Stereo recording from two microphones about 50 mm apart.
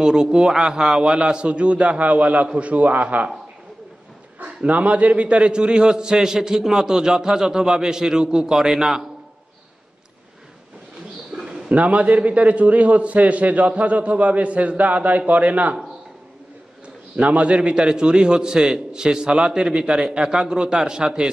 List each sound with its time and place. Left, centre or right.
0.0 s a man's voice: centre; by 3.3 s right
4.6 s a man's voice: right; by 9.0 s centre
11.3 s a man's voice: right
17.2 s a man's voice: right